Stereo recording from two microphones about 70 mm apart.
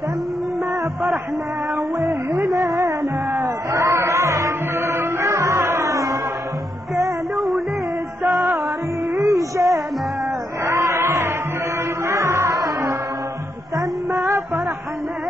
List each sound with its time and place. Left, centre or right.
2.0 s music: right
7.3 s music: centre
8.2 s music: right
9.1 s music: right
10.6 s a sound: right
12.1 s music: right
14.1 s music: right